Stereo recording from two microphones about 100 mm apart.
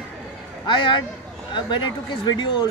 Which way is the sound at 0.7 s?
55° left (ahead or behind).